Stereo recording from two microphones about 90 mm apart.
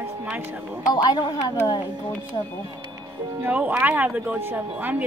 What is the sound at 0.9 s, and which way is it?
Speech, 55° left (ahead or behind).